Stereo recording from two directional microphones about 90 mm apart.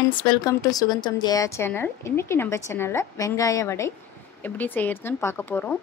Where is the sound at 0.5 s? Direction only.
40° left (ahead or behind).